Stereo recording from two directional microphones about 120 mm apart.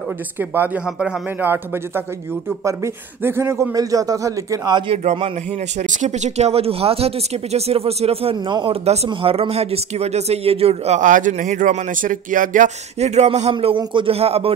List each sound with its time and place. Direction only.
0.8 s speech: 5° right (ahead or behind)
2.6 s a man's voice: 20° right (ahead or behind)
4.7 s speech: 45° right (ahead or behind)
5.8 s speech: 85° right; by 8.4 s 55° right (ahead or behind)
8.5 s speech: 40° right (ahead or behind)
8.8 s speech: 60° right (ahead or behind)
13.5 s speech: 50° right (ahead or behind)